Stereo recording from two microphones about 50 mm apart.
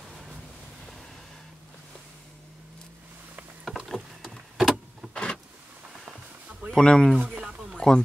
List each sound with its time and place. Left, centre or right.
3.6 s vehicle: centre
5.1 s power windows: centre
6.7 s speech: centre
7.7 s a sound: centre